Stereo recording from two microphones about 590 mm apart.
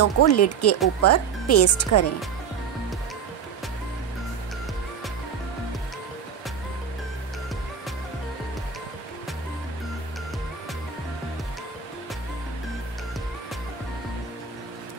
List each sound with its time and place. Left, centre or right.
0.0 s speech: left